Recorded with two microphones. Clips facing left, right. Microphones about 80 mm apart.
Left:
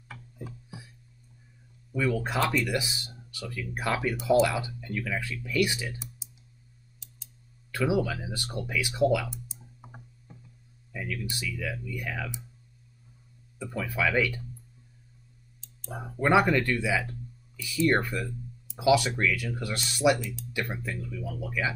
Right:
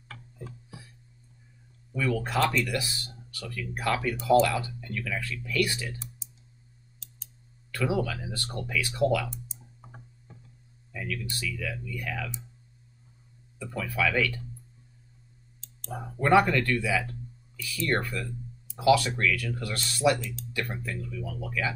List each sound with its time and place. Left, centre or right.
0.1 s music: centre
1.9 s speech: centre
7.7 s speech: centre
13.6 s speech: centre
15.6 s speech: centre